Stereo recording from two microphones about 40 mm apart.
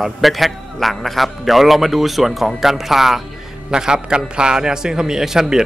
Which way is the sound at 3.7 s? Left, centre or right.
Centre.